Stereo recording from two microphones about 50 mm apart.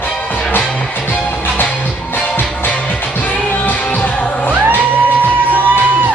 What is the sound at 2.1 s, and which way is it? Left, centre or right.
Music, left.